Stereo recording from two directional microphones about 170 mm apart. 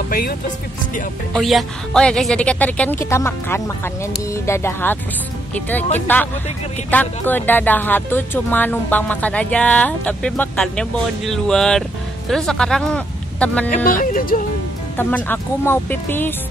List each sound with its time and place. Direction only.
0.1 s speech: 60° left (ahead or behind)
1.3 s speech: centre (ahead or behind)
13.7 s speech: 50° left (ahead or behind)
15.0 s speech: 10° left (ahead or behind)